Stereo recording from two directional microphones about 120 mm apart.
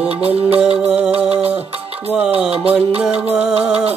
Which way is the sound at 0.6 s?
5° right (ahead or behind).